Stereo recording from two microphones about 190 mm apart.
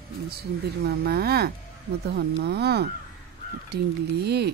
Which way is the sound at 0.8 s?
55° right (ahead or behind).